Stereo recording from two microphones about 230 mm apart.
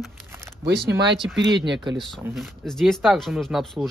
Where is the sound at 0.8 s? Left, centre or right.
Right.